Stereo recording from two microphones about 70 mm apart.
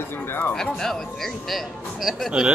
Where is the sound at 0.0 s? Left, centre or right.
Left.